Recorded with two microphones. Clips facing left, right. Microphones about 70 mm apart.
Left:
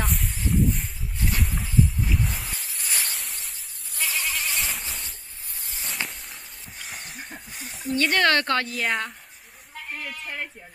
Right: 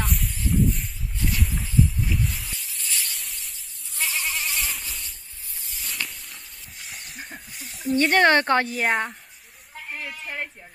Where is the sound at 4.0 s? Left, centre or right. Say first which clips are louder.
Even; centre.